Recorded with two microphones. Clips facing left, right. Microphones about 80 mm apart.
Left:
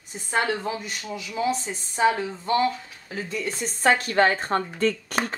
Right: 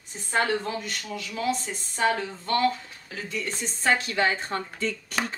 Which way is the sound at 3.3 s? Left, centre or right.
Centre.